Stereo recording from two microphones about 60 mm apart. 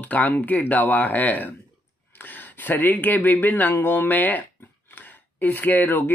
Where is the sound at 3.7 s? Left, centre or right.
Left.